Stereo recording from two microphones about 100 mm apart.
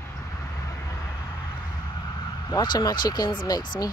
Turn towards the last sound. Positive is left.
turn(degrees=40)  # may be behind; listen again after turning